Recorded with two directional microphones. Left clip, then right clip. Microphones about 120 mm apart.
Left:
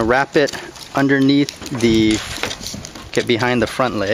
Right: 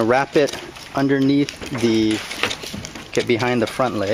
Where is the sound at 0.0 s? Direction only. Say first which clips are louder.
Left 1 dB; 20° left (ahead or behind).